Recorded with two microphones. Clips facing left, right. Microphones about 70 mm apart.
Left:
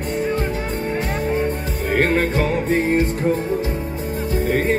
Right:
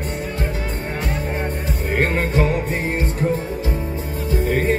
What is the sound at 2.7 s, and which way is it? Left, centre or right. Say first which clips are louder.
Music: left 5 dB; left.